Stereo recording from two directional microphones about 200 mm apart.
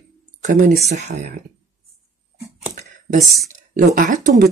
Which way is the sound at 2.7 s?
40° right (ahead or behind).